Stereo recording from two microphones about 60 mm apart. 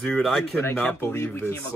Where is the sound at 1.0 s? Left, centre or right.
Left.